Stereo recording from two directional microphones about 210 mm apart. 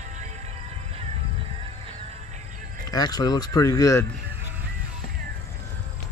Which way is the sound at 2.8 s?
20° left (ahead or behind).